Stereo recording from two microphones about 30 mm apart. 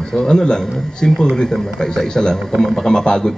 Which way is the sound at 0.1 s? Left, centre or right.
Centre.